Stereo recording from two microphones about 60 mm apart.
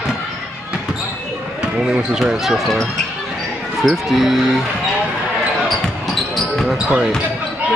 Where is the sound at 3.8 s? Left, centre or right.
Centre.